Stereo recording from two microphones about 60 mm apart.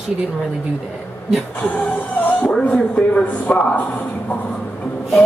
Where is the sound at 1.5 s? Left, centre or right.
Left.